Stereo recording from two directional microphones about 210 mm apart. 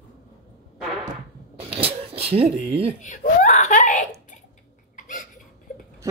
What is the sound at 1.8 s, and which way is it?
Speech, 30° right (ahead or behind).